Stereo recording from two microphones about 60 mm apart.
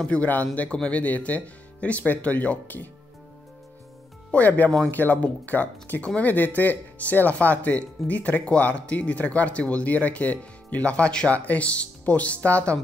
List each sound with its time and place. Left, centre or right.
0.0 s speech: left
4.3 s speech: left